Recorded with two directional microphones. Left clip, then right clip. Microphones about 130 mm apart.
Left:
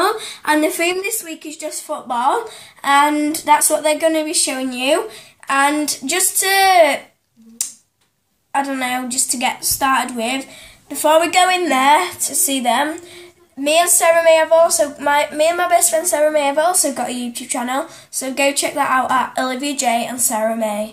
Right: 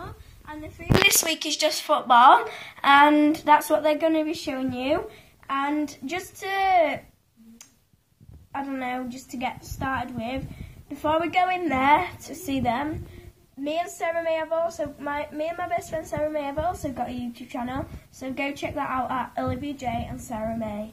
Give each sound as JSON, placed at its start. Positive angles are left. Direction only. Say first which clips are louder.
{"t": 1.2, "sound": "a woman's voice", "louder": "right 5 dB", "side_deg": -10}
{"t": 1.7, "sound": "a woman's voice", "louder": "right 3 dB", "side_deg": 20}
{"t": 8.5, "sound": "a woman's voice", "louder": "left 11 dB", "side_deg": 25}